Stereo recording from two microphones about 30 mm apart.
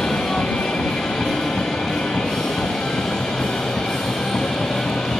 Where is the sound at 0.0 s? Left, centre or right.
Centre.